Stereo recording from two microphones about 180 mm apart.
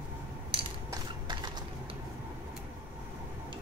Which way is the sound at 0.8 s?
25° right (ahead or behind).